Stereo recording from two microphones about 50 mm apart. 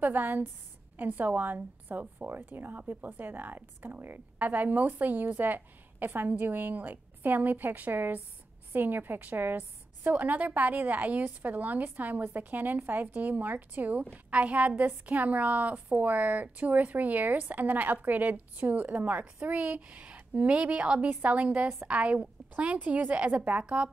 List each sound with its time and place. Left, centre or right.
0.0 s a woman's voice: right